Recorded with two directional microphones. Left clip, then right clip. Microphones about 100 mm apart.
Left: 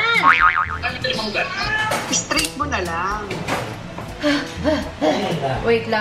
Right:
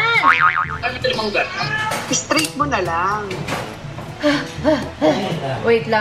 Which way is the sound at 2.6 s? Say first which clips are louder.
Right 4 dB; 55° right (ahead or behind).